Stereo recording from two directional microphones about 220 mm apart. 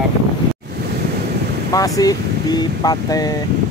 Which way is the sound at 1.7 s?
15° left (ahead or behind).